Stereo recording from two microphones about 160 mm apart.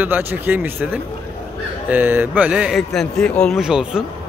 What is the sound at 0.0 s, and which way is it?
A man's voice, 10° right (ahead or behind).